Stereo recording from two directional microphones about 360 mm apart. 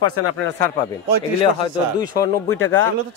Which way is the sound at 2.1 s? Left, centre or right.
Centre.